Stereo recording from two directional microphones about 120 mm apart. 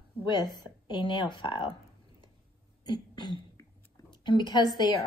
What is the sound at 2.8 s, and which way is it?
Throat clearing, 40° left (ahead or behind).